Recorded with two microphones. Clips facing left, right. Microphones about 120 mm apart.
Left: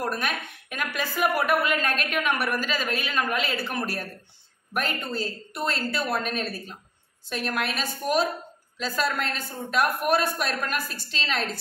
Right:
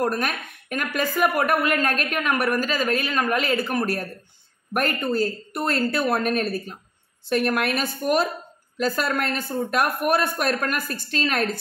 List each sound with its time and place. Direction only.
0.0 s a woman's voice: 45° right (ahead or behind)